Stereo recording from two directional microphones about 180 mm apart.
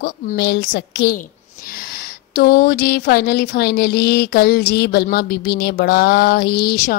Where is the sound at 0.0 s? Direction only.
60° left (ahead or behind).